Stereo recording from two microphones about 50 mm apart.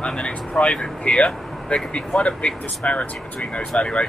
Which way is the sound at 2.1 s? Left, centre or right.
Centre.